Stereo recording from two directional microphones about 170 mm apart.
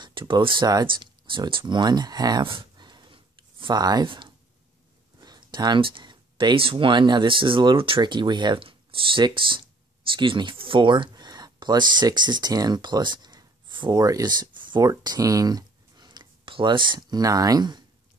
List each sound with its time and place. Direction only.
0.0 s speech: 30° right (ahead or behind)